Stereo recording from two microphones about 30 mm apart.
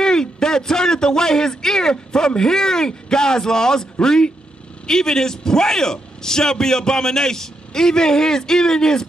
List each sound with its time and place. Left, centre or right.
0.0 s a man's voice: left